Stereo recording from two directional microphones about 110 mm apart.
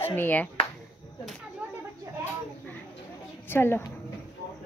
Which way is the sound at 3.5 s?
20° left (ahead or behind).